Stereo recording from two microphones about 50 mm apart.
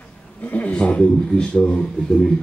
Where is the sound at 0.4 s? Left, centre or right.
Left.